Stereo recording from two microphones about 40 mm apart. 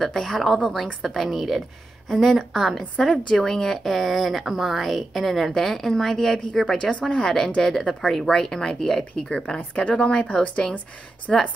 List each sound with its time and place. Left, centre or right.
0.0 s a woman's voice: centre
3.0 s speech: left
3.3 s a woman's voice: centre
6.8 s speech: left
7.2 s speech: centre; by 10.1 s left
11.3 s a woman's voice: centre